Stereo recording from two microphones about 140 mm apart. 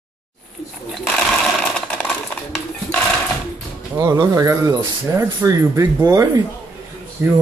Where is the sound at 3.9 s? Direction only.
20° right (ahead or behind).